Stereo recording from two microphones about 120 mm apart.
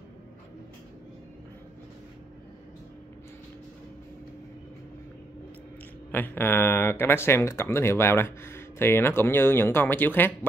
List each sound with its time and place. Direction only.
6.1 s speech: 15° left (ahead or behind)